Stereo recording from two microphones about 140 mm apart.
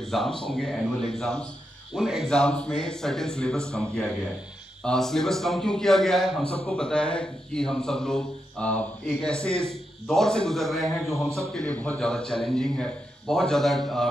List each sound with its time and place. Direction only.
0.0 s a man's voice: centre (ahead or behind)
11.0 s a man's voice: 20° left (ahead or behind)
11.2 s a man's voice: 20° right (ahead or behind)
11.5 s a man's voice: 10° left (ahead or behind)